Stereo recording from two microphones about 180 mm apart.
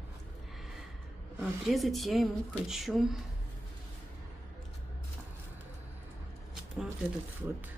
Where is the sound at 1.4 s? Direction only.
Centre (ahead or behind).